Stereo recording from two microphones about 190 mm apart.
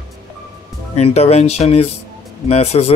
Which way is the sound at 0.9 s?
35° left (ahead or behind).